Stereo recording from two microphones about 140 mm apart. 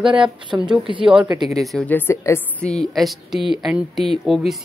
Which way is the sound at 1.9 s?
15° left (ahead or behind).